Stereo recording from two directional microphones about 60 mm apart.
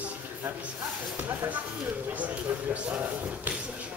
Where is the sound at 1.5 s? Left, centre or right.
Right.